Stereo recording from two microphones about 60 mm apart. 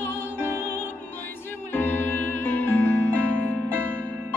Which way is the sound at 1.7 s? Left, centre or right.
Left.